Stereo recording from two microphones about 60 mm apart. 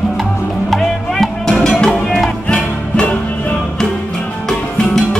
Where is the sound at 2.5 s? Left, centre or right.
Left.